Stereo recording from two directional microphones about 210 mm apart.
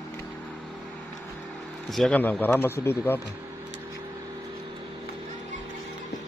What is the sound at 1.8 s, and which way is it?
Speech, centre (ahead or behind).